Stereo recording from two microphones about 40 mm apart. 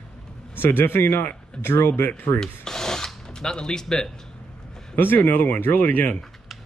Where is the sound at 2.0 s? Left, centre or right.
Left.